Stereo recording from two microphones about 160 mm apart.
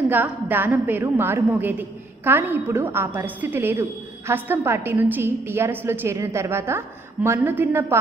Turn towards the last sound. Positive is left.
turn(degrees=-15)  # may be behind; listen again after turning